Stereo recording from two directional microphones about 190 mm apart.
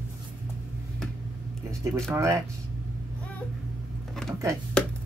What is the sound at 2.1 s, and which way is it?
Speech, 15° right (ahead or behind).